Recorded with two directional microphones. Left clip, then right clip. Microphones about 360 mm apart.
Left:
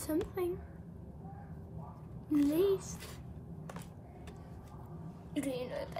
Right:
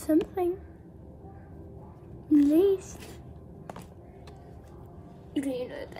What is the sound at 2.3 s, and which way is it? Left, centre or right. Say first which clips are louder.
Speech: right 9 dB; centre.